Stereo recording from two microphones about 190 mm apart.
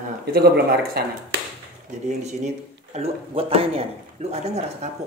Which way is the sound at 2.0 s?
35° right (ahead or behind).